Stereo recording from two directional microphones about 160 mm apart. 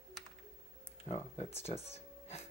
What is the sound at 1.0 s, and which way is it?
Speech, 40° left (ahead or behind).